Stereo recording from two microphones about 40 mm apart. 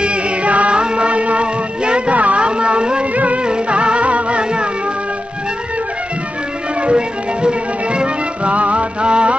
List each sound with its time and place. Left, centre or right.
0.0 s music: right
6.9 s music: right